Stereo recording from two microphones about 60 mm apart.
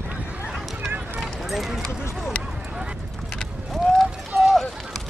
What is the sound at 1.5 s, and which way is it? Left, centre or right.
Clip-clop, centre.